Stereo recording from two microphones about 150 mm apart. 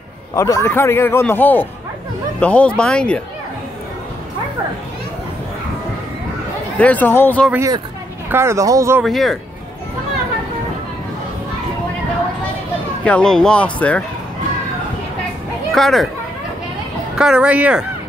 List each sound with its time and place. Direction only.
0.4 s a man's voice: 20° left (ahead or behind)
6.8 s a man's voice: 10° left (ahead or behind)
8.3 s speech: 15° right (ahead or behind)
9.0 s speech: centre (ahead or behind)
13.0 s a man's voice: 5° left (ahead or behind)
15.7 s speech: centre (ahead or behind)
17.2 s speech: 5° right (ahead or behind)